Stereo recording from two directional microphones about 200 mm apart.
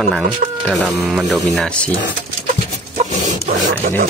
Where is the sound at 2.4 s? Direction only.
40° right (ahead or behind).